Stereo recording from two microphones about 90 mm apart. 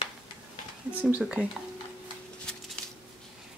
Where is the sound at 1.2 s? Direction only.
5° right (ahead or behind).